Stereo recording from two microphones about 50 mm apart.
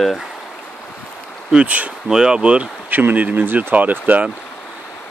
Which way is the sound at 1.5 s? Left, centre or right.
Centre.